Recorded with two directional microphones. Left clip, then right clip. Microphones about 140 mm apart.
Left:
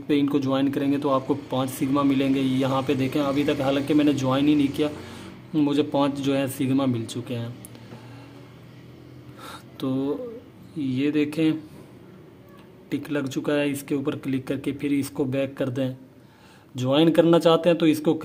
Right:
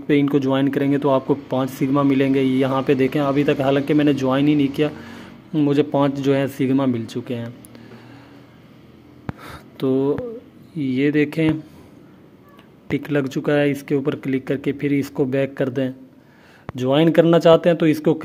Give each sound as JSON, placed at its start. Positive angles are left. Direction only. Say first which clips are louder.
{"t": 0.1, "sound": "speech", "louder": "right 5 dB", "side_deg": -25}
{"t": 9.4, "sound": "a sound", "louder": "right 6 dB", "side_deg": -30}
{"t": 10.8, "sound": "speech", "louder": "right 5 dB", "side_deg": -30}
{"t": 12.8, "sound": "speech", "louder": "right 6 dB", "side_deg": -30}